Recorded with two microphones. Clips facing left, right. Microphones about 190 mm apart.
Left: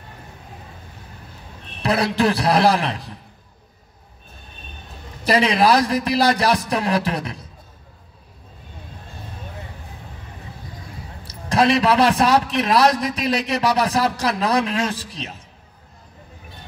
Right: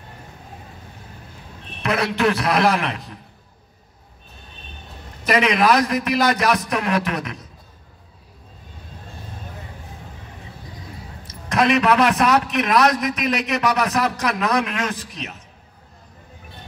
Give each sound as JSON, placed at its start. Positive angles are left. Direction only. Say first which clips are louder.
{"t": 1.8, "sound": "a man's voice", "louder": "left 2 dB", "side_deg": 35}
{"t": 5.2, "sound": "a man's voice", "louder": "left 1 dB", "side_deg": 30}
{"t": 11.2, "sound": "a man's voice", "louder": "left 1 dB", "side_deg": 30}